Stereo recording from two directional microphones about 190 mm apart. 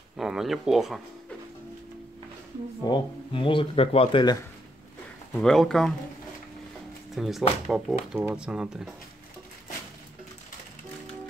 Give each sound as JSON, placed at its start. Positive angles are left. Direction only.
{"t": 0.2, "sound": "speech", "side_deg": 0}
{"t": 2.8, "sound": "speech", "side_deg": 25}
{"t": 5.4, "sound": "speech", "side_deg": 0}
{"t": 7.2, "sound": "speech", "side_deg": 0}